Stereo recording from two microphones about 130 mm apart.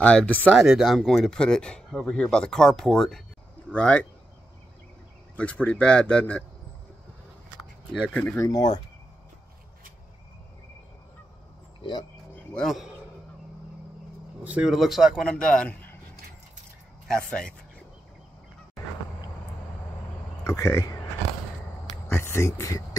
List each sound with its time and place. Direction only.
0.0 s a man's voice: 10° left (ahead or behind)
0.7 s a man's voice: 5° right (ahead or behind)
5.3 s a man's voice: 10° left (ahead or behind)
8.1 s a man's voice: 15° left (ahead or behind)
8.5 s speech: 30° left (ahead or behind)
11.8 s speech: 35° left (ahead or behind)
12.5 s speech: centre (ahead or behind)
14.4 s speech: 10° right (ahead or behind); by 16.0 s 10° left (ahead or behind)
17.1 s a man's voice: 5° left (ahead or behind)
20.4 s speech: 20° left (ahead or behind)
22.0 s a sound: 20° left (ahead or behind)